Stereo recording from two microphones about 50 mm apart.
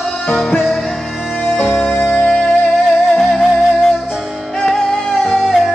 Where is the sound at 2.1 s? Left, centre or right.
Centre.